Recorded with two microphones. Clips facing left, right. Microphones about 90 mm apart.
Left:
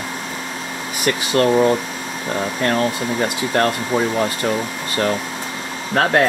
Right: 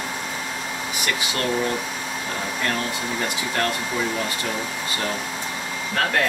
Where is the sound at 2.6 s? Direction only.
40° left (ahead or behind).